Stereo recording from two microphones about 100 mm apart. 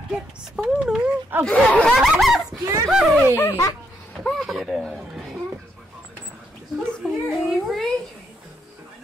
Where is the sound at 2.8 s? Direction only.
Centre (ahead or behind).